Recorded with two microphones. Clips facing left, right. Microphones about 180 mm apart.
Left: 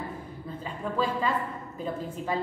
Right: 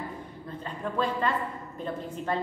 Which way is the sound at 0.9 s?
5° left (ahead or behind).